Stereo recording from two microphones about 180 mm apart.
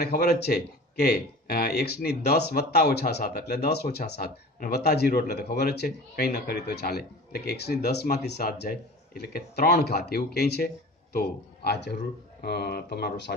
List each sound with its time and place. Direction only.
0.0 s speech: 60° left (ahead or behind)